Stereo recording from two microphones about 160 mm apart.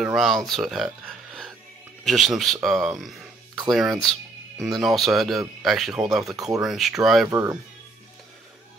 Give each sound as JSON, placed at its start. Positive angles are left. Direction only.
{"t": 0.0, "sound": "speech", "side_deg": 0}
{"t": 7.2, "sound": "speech", "side_deg": -20}